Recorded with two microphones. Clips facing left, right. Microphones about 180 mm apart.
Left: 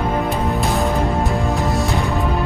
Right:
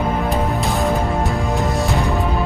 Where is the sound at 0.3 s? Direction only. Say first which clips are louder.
Even; centre (ahead or behind).